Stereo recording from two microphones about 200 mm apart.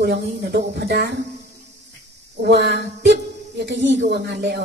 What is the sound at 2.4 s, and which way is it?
A woman's voice, 55° right (ahead or behind).